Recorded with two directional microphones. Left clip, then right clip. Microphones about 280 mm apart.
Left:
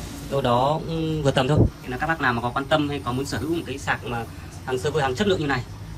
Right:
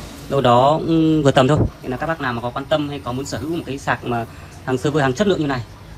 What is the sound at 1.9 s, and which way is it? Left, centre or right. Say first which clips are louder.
Speech: right 1 dB; centre.